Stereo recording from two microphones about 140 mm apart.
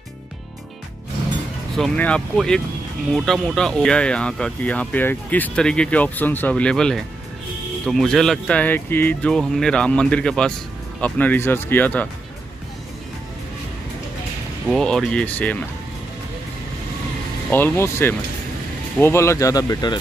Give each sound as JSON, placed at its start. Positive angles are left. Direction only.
{"t": 1.8, "sound": "speech", "side_deg": 10}
{"t": 14.7, "sound": "speech", "side_deg": 5}
{"t": 17.5, "sound": "speech", "side_deg": 15}